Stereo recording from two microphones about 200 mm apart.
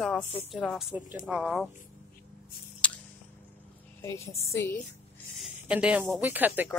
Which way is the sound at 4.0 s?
15° left (ahead or behind).